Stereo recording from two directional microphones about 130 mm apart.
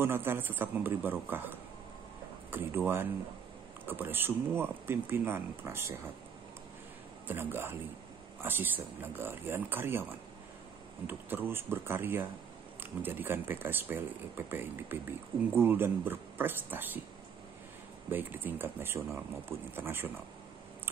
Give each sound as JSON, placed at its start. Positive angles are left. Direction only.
{"t": 0.0, "sound": "speech", "side_deg": -15}
{"t": 7.2, "sound": "speech", "side_deg": -15}
{"t": 11.1, "sound": "speech", "side_deg": -15}
{"t": 18.1, "sound": "speech", "side_deg": -15}